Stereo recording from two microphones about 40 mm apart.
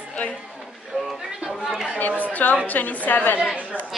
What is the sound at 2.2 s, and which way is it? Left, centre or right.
A woman's voice, left.